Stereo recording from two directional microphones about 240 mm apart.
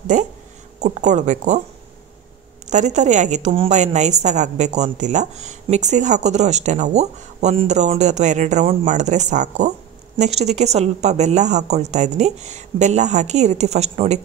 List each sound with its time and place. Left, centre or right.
0.0 s a woman's voice: right
2.6 s a woman's voice: right